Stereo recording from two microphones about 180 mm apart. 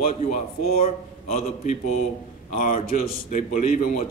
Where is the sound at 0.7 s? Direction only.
35° left (ahead or behind).